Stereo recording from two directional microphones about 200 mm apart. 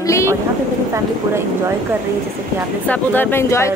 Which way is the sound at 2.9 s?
10° left (ahead or behind).